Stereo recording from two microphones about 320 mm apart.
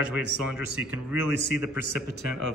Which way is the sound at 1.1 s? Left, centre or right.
Centre.